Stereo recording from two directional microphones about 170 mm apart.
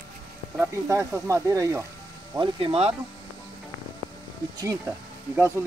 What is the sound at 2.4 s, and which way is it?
Speech, 35° right (ahead or behind).